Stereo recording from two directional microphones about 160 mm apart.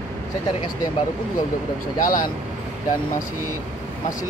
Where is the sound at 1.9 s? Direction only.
60° left (ahead or behind).